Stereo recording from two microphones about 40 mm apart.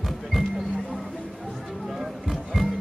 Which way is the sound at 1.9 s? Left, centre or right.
Centre.